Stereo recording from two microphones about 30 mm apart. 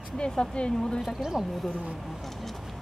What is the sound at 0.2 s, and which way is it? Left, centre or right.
Speech, left.